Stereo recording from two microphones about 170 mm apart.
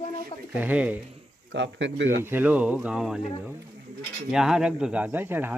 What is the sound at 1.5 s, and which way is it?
Speech, 90° right.